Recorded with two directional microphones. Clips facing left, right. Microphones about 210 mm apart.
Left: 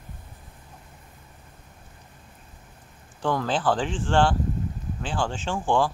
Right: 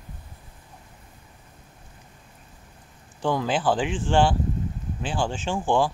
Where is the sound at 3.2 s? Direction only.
5° right (ahead or behind).